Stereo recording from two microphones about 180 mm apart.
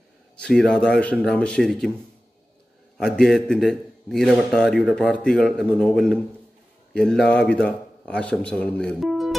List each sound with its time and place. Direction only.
0.4 s a man's voice: 5° left (ahead or behind)
3.0 s a man's voice: 5° left (ahead or behind)